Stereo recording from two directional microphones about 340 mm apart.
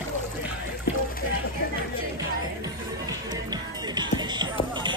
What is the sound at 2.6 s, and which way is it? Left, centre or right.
Music, centre.